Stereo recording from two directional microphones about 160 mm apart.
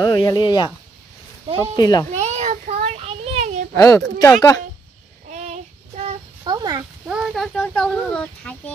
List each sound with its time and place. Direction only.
0.0 s speech: 25° left (ahead or behind)
1.8 s speech: 25° left (ahead or behind)
2.0 s a sound: 45° right (ahead or behind)
3.7 s speech: 20° left (ahead or behind)
6.4 s a sound: 25° right (ahead or behind)
7.1 s a child's voice: 5° right (ahead or behind)